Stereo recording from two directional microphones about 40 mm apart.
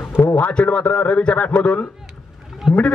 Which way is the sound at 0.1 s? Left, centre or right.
Left.